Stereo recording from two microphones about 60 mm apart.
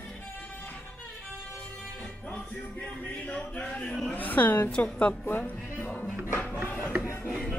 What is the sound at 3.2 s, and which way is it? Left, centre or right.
Speech, left.